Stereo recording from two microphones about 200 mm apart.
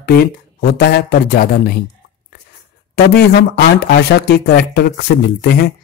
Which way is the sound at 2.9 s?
55° left (ahead or behind).